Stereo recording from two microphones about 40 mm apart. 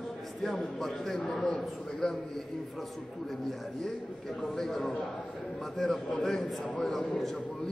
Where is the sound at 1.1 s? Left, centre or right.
Centre.